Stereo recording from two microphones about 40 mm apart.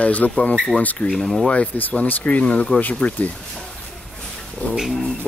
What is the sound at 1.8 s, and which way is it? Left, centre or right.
Speech, left.